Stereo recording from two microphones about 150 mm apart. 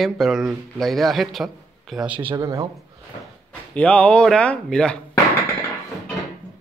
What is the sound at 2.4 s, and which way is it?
Speech, 25° right (ahead or behind).